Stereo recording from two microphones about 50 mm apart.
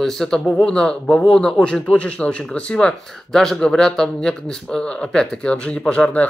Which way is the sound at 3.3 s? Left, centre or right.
Centre.